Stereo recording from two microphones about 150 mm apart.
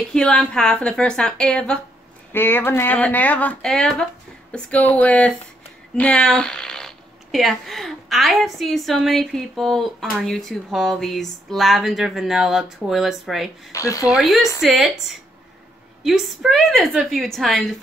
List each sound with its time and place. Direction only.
0.1 s speech: 5° left (ahead or behind)
13.7 s speech: 20° left (ahead or behind)
14.0 s speech: 5° right (ahead or behind)
16.0 s speech: centre (ahead or behind)